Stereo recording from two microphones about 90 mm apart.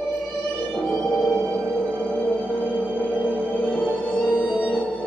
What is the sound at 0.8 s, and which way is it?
Music, 10° left (ahead or behind).